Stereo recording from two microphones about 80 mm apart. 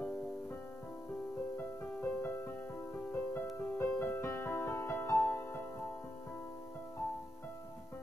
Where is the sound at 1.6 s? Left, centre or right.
Left.